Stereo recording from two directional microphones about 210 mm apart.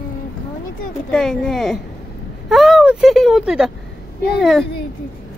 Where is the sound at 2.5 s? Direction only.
Centre (ahead or behind).